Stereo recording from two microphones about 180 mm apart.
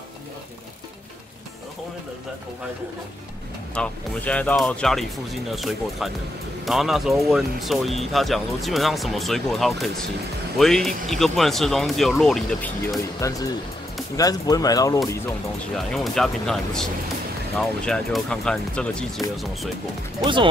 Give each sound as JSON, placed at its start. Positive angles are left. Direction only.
{"t": 3.7, "sound": "speech", "side_deg": 5}
{"t": 15.7, "sound": "speech", "side_deg": 0}